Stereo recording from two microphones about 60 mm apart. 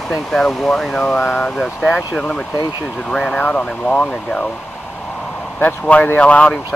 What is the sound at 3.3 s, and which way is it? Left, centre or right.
Speech, centre.